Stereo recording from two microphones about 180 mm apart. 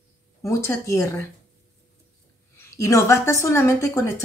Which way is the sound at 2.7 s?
15° left (ahead or behind).